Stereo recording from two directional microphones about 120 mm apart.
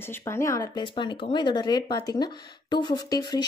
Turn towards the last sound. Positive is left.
turn(degrees=35)  # may be behind; listen again after turning